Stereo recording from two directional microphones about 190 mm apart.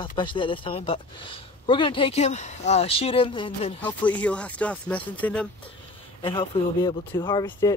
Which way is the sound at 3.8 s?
10° left (ahead or behind).